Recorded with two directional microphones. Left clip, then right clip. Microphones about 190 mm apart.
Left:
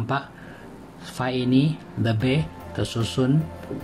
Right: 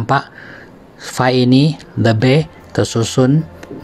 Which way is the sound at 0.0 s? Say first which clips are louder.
Right 11 dB; 45° right (ahead or behind).